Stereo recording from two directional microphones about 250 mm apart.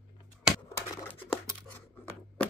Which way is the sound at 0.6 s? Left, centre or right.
Centre.